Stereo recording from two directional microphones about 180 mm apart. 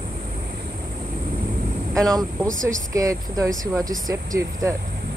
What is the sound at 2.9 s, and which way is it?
Speech, 20° right (ahead or behind).